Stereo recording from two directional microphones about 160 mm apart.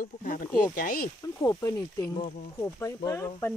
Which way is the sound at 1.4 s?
20° left (ahead or behind).